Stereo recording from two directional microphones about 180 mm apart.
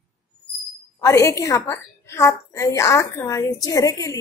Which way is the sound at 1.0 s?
15° left (ahead or behind).